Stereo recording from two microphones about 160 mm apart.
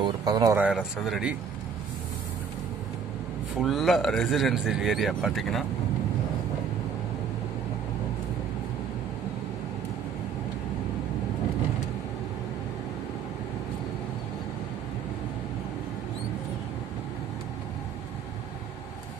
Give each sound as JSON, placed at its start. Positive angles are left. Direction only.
{"t": 0.0, "sound": "speech", "side_deg": -25}
{"t": 0.6, "sound": "speech", "side_deg": -5}
{"t": 3.5, "sound": "speech", "side_deg": 0}